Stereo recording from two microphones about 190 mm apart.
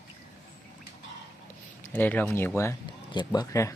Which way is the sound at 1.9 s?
10° left (ahead or behind).